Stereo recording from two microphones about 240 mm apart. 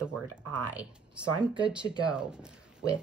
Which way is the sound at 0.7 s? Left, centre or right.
Centre.